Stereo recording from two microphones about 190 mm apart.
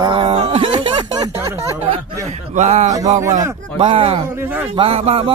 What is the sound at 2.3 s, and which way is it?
Speech, 35° right (ahead or behind).